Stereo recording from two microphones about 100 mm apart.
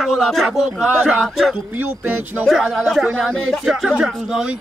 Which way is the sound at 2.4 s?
Centre (ahead or behind).